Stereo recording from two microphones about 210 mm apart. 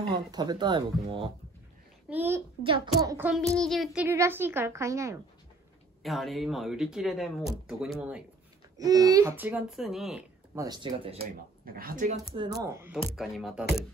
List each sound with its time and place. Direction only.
0.3 s speech: 20° right (ahead or behind)
2.0 s a woman's voice: 10° right (ahead or behind)
2.6 s a woman's voice: 25° right (ahead or behind)
3.5 s a woman's voice: centre (ahead or behind)
6.0 s speech: centre (ahead or behind)
8.7 s a woman's voice: 15° right (ahead or behind)
10.5 s speech: 15° right (ahead or behind)
11.6 s speech: 45° right (ahead or behind)
12.1 s speech: 25° right (ahead or behind)
12.6 s a woman's voice: 15° right (ahead or behind)
13.1 s speech: centre (ahead or behind)